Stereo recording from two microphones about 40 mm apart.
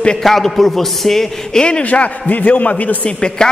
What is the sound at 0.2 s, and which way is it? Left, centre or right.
A man's voice, centre.